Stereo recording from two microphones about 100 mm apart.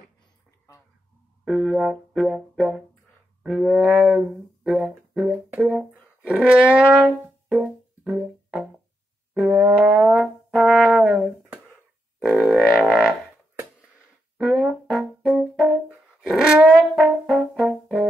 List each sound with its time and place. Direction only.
1.4 s brass instrument: 5° right (ahead or behind)
3.4 s music: 5° right (ahead or behind)
5.6 s speech: 10° right (ahead or behind)
9.3 s brass instrument: 10° right (ahead or behind)
14.4 s brass instrument: centre (ahead or behind)
16.3 s music: 5° right (ahead or behind)